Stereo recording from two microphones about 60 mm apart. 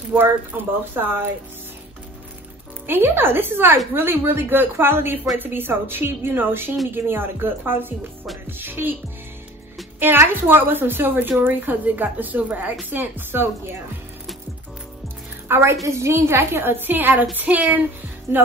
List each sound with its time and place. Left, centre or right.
0.1 s a woman's voice: right
2.9 s a woman's voice: right
9.9 s a woman's voice: right
15.4 s a sound: right
15.7 s a woman's voice: right
18.3 s a woman's voice: right